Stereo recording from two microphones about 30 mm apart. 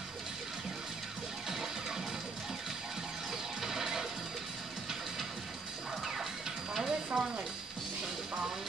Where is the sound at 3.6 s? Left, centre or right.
Centre.